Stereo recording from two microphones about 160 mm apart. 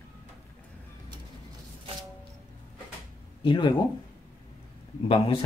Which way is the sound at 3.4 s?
30° left (ahead or behind).